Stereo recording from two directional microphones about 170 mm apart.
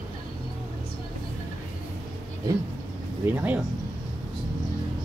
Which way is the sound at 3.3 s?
10° right (ahead or behind).